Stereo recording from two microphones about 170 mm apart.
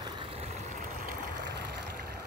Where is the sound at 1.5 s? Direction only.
65° right (ahead or behind).